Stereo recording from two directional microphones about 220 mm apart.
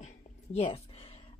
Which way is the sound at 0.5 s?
25° left (ahead or behind).